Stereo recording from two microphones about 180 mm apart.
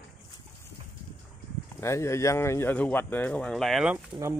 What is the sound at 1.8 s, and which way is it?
Speech, 15° left (ahead or behind).